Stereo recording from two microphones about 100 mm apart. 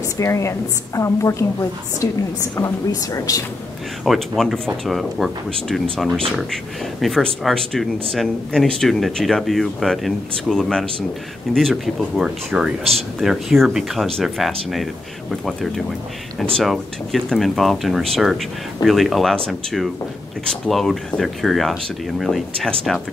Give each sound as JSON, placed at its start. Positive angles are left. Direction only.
{"t": 0.2, "sound": "a woman's voice", "side_deg": 30}
{"t": 4.0, "sound": "speech", "side_deg": 0}